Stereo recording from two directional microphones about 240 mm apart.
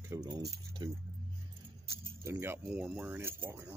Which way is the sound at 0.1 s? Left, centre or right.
Centre.